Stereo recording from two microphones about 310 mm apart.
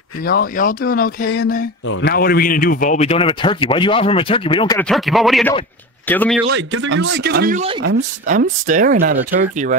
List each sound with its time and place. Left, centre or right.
0.2 s a man's voice: left; by 6.4 s centre
6.5 s speech: right